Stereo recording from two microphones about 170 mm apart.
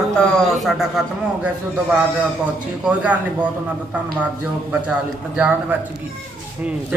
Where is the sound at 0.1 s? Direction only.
Centre (ahead or behind).